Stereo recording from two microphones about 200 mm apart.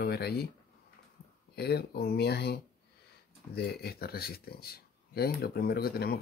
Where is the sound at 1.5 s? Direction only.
55° left (ahead or behind).